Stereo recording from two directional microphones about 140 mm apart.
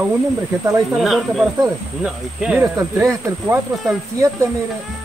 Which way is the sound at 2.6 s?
20° right (ahead or behind).